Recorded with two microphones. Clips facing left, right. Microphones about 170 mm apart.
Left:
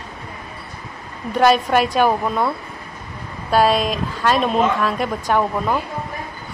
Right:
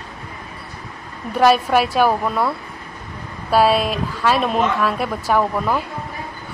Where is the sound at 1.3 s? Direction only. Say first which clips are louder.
Even; 5° right (ahead or behind).